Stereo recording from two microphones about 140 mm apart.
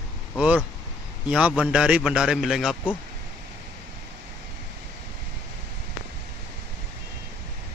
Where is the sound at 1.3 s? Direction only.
5° right (ahead or behind).